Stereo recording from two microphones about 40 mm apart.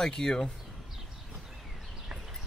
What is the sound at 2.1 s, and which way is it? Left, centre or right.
Horse, centre.